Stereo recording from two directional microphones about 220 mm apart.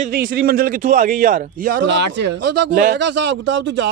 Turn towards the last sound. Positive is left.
turn(degrees=-55)  # may be behind; listen again after turning